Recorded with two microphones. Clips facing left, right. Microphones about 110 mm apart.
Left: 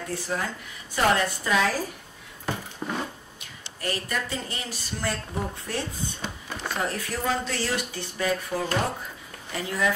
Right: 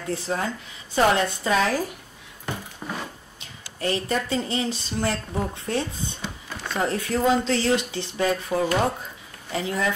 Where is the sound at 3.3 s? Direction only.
25° right (ahead or behind).